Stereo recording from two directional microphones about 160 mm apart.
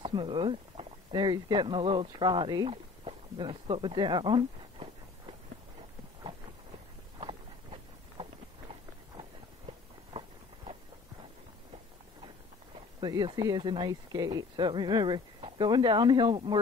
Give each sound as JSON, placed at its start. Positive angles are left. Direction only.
{"t": 0.0, "sound": "speech", "side_deg": -30}
{"t": 7.2, "sound": "a sound", "side_deg": -35}
{"t": 10.1, "sound": "walk", "side_deg": -35}
{"t": 13.0, "sound": "speech", "side_deg": -25}